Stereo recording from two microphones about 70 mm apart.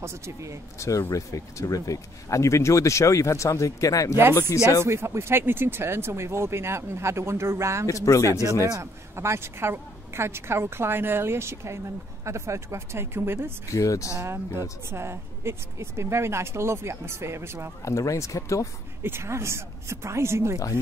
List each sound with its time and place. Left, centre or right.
0.0 s speech: right
0.7 s speech: left
4.8 s speech: right
7.8 s speech: left
8.3 s speech: right
13.7 s speech: left
14.2 s speech: right
17.8 s speech: left
19.0 s speech: right